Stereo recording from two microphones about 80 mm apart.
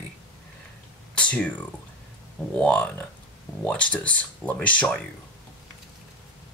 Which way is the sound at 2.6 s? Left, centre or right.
Centre.